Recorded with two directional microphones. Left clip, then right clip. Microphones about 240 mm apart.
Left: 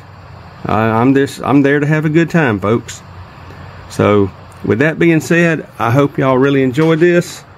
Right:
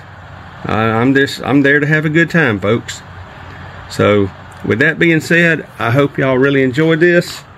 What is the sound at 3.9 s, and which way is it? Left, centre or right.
Speech, centre.